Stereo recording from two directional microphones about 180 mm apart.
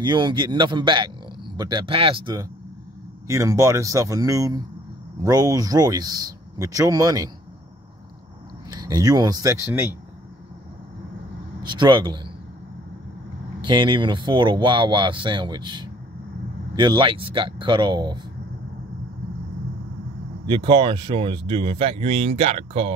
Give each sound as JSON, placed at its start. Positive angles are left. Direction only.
{"t": 0.0, "sound": "speech", "side_deg": -25}
{"t": 3.3, "sound": "speech", "side_deg": -15}
{"t": 8.6, "sound": "speech", "side_deg": -20}
{"t": 11.6, "sound": "speech", "side_deg": -25}
{"t": 13.6, "sound": "speech", "side_deg": -25}
{"t": 20.4, "sound": "speech", "side_deg": -25}